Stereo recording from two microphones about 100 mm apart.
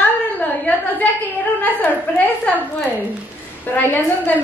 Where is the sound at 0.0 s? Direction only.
15° left (ahead or behind).